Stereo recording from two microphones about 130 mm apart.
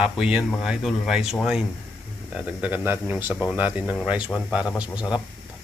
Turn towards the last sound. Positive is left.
turn(degrees=-5)  # may be behind; listen again after turning